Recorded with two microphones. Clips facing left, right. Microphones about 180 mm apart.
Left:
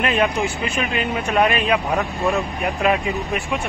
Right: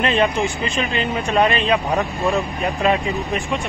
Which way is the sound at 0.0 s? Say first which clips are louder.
Right 1 dB; 5° left (ahead or behind).